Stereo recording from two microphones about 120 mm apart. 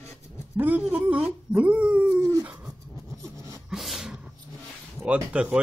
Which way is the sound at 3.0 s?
25° right (ahead or behind).